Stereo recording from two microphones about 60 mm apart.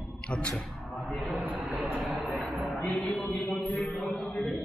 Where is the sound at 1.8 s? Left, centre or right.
Centre.